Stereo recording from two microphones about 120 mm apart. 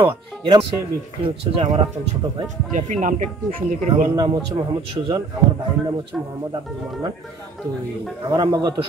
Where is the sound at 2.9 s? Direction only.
90° right.